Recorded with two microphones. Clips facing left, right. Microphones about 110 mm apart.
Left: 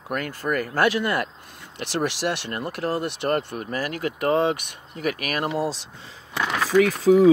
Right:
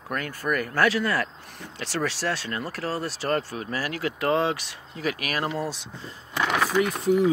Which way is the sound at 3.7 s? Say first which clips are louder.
Left 2 dB; 50° left (ahead or behind).